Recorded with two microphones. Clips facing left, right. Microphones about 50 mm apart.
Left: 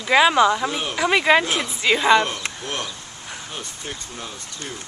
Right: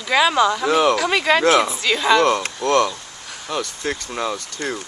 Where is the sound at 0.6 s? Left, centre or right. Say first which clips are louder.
Right 9 dB; right.